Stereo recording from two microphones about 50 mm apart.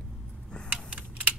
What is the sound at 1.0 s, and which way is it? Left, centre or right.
Typing, right.